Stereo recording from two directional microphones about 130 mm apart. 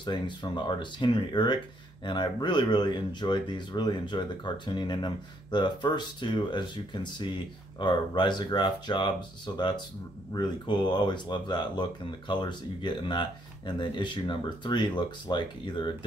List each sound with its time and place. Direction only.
0.0 s speech: 35° left (ahead or behind)